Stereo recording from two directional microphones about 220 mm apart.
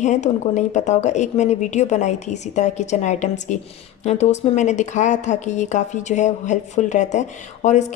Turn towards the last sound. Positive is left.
turn(degrees=30)  # may be behind; listen again after turning